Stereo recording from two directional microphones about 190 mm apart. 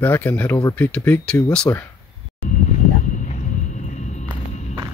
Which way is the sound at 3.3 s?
40° left (ahead or behind).